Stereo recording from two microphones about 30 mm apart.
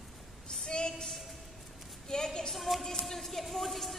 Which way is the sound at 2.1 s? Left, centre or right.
Left.